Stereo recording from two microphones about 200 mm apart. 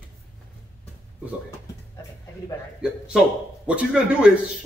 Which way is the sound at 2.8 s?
5° right (ahead or behind).